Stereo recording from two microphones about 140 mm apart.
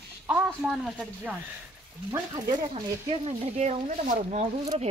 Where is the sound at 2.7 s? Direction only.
45° right (ahead or behind).